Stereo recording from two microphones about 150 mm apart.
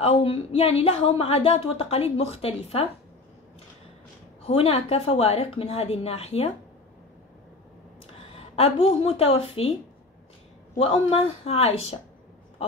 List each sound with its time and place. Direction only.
0.0 s a woman's voice: 40° left (ahead or behind)
4.5 s a woman's voice: 40° left (ahead or behind)
8.1 s a woman's voice: 40° left (ahead or behind)
10.8 s a woman's voice: 40° left (ahead or behind)